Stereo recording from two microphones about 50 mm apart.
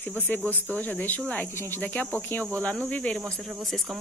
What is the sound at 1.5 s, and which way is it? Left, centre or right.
Speech, left.